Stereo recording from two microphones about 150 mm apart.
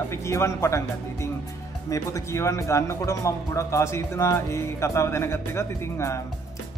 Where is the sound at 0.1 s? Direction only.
20° left (ahead or behind).